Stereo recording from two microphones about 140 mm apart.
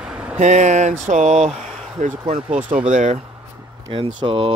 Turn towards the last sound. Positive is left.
turn(degrees=-40)  # may be behind; listen again after turning